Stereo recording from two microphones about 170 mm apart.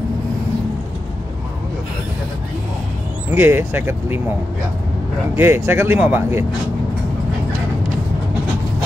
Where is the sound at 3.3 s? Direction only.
10° right (ahead or behind).